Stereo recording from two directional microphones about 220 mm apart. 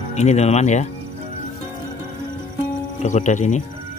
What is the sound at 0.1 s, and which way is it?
Speech, 30° left (ahead or behind).